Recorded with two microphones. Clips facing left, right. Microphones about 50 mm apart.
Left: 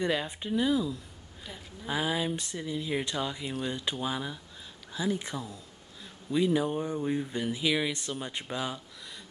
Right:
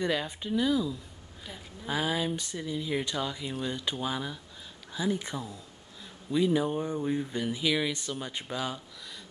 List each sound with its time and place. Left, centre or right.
0.0 s speech: centre
1.4 s speech: centre